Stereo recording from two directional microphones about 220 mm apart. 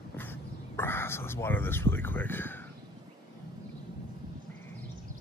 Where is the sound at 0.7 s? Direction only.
10° left (ahead or behind).